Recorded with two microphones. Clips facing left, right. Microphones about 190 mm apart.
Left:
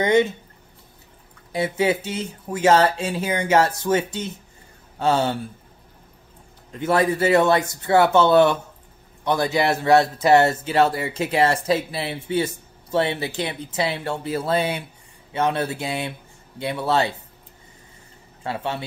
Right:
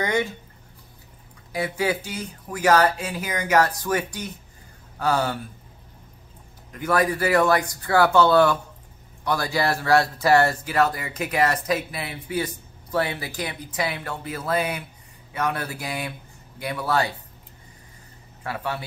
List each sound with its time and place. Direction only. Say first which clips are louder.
0.0 s speech: left 6 dB; 25° left (ahead or behind)
1.5 s speech: left 4 dB; 25° left (ahead or behind)
6.7 s speech: left 2 dB; 25° left (ahead or behind)
18.4 s speech: left 2 dB; 25° left (ahead or behind)